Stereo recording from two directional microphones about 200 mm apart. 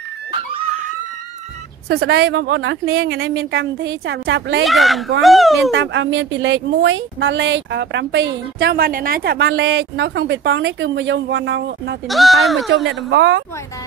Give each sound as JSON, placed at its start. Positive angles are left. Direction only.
{"t": 1.9, "sound": "speech", "side_deg": -55}
{"t": 2.5, "sound": "speech", "side_deg": -80}
{"t": 3.5, "sound": "speech", "side_deg": -60}
{"t": 4.6, "sound": "speech", "side_deg": 0}
{"t": 5.7, "sound": "speech", "side_deg": -70}
{"t": 12.1, "sound": "speech", "side_deg": 0}
{"t": 12.8, "sound": "speech", "side_deg": -65}